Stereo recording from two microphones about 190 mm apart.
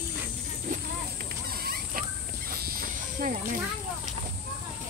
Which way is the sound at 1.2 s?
55° right (ahead or behind).